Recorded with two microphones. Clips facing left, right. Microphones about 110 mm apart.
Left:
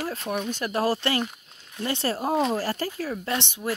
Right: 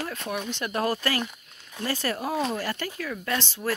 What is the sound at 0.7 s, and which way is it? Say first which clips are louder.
A woman's voice: left 2 dB; 30° left (ahead or behind).